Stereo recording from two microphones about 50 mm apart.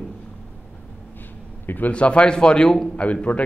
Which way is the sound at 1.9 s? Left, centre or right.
Left.